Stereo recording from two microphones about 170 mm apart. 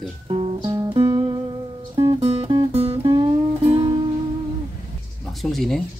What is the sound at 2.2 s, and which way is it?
Music, 35° right (ahead or behind).